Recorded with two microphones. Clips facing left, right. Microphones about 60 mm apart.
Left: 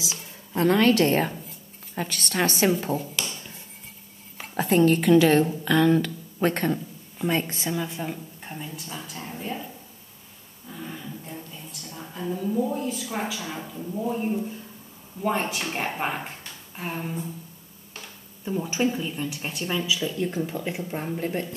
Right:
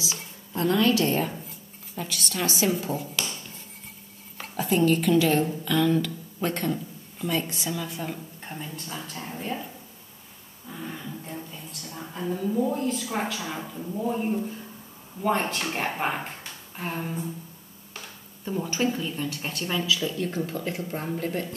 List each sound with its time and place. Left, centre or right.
0.6 s a woman's voice: left
3.0 s speech: centre
4.6 s a woman's voice: left
7.7 s a woman's voice: centre
8.1 s speech: centre
10.7 s speech: centre
13.4 s speech: centre
18.4 s speech: centre